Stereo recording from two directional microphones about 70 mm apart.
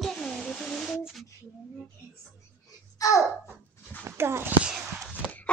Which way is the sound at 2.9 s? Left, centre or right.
Left.